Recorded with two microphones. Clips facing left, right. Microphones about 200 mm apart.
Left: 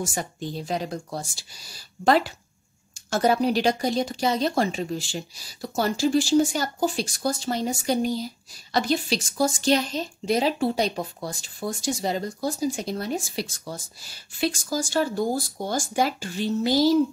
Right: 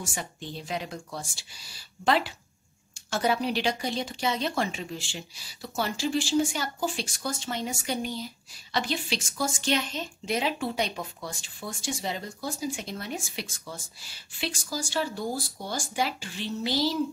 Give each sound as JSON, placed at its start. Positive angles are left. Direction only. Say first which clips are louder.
{"t": 0.0, "sound": "a woman's voice", "louder": "left 7 dB", "side_deg": 45}